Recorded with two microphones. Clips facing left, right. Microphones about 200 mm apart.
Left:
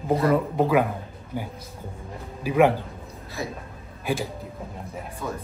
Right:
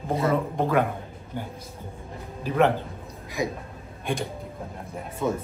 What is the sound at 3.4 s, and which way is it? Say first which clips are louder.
Speech: right 4 dB; 15° right (ahead or behind).